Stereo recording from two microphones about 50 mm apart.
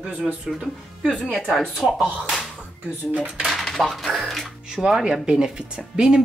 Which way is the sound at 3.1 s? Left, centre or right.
Right.